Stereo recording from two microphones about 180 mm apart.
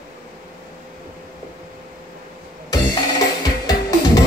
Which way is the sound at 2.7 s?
20° left (ahead or behind).